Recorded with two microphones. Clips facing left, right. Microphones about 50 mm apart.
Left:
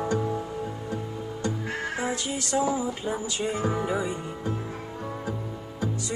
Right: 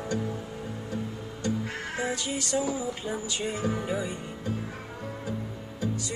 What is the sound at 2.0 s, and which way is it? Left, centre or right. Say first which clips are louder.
Music: left 1 dB; left.